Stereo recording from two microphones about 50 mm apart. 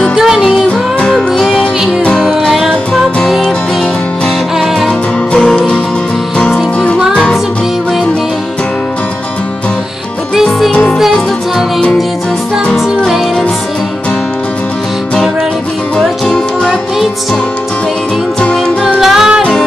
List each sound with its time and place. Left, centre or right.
0.1 s music: centre
0.4 s music: centre
2.4 s music: centre
4.6 s music: centre
10.3 s music: centre
10.7 s music: left
16.0 s music: centre
18.9 s music: centre